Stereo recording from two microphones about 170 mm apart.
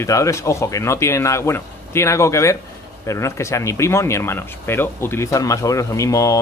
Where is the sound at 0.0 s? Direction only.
15° left (ahead or behind).